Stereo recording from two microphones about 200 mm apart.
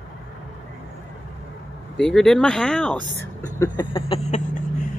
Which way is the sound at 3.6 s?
25° left (ahead or behind).